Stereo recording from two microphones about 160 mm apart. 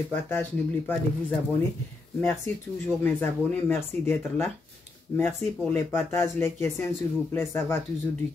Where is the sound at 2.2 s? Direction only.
15° left (ahead or behind).